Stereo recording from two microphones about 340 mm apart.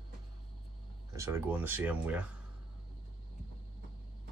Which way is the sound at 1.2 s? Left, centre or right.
Centre.